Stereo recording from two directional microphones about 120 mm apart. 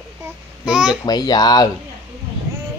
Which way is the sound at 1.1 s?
35° left (ahead or behind).